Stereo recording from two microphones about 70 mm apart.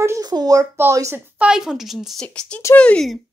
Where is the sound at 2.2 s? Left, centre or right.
Centre.